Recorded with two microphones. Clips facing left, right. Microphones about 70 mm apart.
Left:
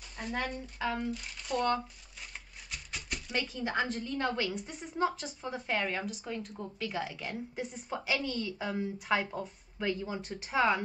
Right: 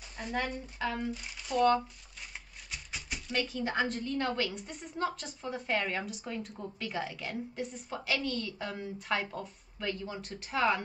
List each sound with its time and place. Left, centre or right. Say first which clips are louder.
0.2 s speech: right 1 dB; centre